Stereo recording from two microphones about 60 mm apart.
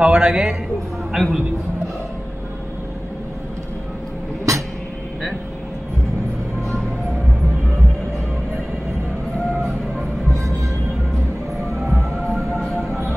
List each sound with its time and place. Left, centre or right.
0.0 s a man's voice: centre
4.5 s train: right